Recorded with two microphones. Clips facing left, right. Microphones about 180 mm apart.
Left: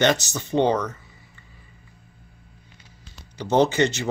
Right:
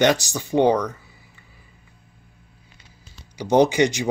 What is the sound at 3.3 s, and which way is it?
Speech, 15° right (ahead or behind).